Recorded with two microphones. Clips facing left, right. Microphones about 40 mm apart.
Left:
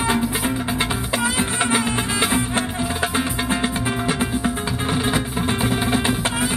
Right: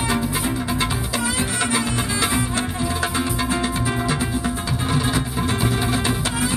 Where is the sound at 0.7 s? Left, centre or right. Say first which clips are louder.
Left 1 dB; left.